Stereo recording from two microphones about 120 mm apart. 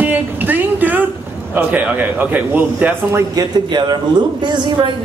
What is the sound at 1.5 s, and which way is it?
A man's voice, 15° right (ahead or behind).